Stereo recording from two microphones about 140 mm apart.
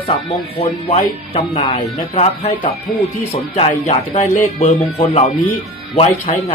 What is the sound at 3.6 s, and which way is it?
Speech, 55° left (ahead or behind).